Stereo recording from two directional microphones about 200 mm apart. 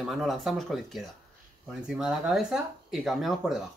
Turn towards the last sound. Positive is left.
turn(degrees=0)  # may be behind; listen again after turning